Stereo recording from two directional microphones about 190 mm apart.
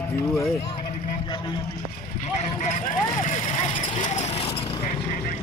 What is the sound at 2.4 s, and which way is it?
Speech, 40° left (ahead or behind).